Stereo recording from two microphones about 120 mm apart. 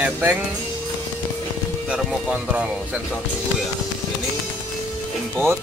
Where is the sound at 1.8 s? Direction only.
10° right (ahead or behind).